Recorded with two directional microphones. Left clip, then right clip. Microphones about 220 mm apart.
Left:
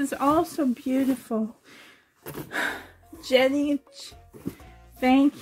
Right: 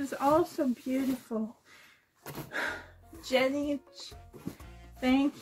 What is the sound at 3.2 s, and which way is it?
Speech, 45° left (ahead or behind).